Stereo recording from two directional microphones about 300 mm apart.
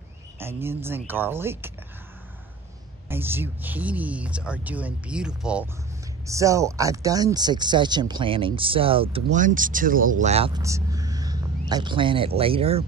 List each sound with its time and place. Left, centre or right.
0.4 s speech: centre
3.1 s speech: centre